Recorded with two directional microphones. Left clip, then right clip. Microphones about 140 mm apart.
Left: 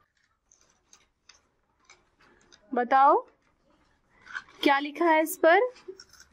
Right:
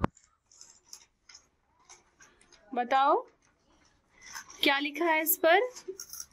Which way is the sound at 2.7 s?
35° left (ahead or behind).